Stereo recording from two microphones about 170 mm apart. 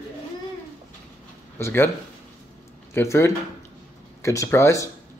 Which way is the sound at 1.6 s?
15° left (ahead or behind).